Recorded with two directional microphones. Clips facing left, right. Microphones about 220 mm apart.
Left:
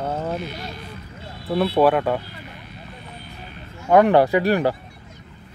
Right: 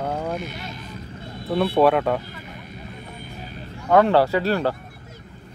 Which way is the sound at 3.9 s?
15° left (ahead or behind).